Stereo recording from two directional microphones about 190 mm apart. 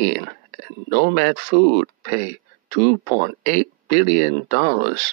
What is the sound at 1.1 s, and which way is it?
Speech, 40° right (ahead or behind).